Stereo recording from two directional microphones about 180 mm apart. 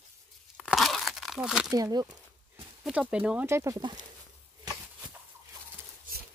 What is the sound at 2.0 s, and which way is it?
Speech, 5° right (ahead or behind).